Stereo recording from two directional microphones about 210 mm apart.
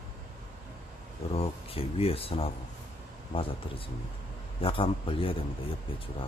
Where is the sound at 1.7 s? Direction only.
25° left (ahead or behind).